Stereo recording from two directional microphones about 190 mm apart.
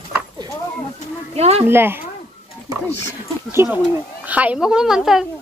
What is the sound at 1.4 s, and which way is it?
Speech, 35° right (ahead or behind).